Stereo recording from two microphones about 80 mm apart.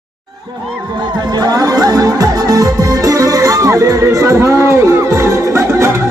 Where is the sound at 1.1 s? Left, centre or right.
Right.